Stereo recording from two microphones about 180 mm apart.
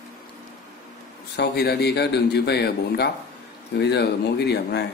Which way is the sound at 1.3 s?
65° left (ahead or behind).